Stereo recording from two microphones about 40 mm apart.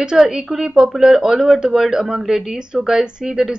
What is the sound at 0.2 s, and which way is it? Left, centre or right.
Speech, centre.